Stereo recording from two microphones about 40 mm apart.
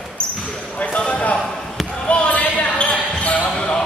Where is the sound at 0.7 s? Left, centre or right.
Left.